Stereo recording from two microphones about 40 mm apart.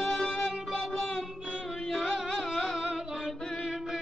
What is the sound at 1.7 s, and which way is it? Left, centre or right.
Music, centre.